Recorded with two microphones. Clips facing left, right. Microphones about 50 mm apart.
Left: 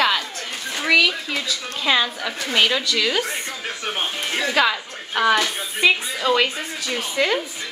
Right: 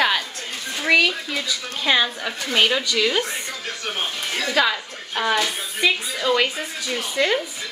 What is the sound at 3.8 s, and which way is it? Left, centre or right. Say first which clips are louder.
Speech: left 2 dB; centre.